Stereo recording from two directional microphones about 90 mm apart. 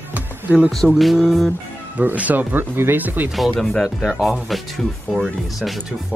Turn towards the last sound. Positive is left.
turn(degrees=0)  # may be behind; listen again after turning